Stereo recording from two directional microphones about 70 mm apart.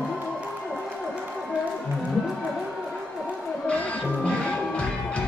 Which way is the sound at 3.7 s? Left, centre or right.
Centre.